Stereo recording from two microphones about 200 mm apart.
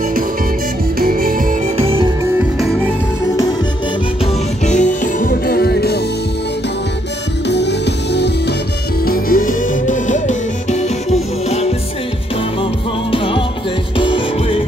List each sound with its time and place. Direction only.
0.9 s music: 45° right (ahead or behind)
2.6 s music: centre (ahead or behind)
4.6 s music: 40° left (ahead or behind)
7.4 s music: 60° left (ahead or behind)
9.0 s music: 45° left (ahead or behind)
13.1 s music: 25° left (ahead or behind)